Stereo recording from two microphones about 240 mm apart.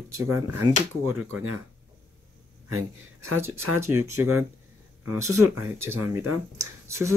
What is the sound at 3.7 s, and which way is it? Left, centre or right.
Speech, centre.